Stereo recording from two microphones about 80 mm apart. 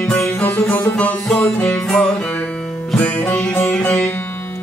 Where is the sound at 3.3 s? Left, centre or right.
Left.